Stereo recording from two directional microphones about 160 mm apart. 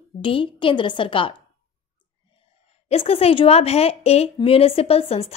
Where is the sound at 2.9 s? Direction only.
40° left (ahead or behind).